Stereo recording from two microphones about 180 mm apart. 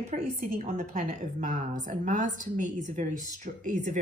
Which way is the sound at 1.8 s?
45° right (ahead or behind).